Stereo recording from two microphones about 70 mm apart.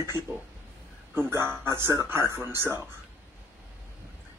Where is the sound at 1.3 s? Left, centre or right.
Right.